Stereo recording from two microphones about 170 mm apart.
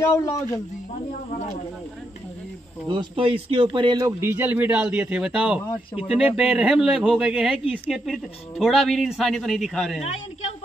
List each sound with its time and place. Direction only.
0.0 s speech: 20° left (ahead or behind)
2.9 s speech: 30° right (ahead or behind); by 10.0 s centre (ahead or behind)
10.0 s speech: 40° left (ahead or behind)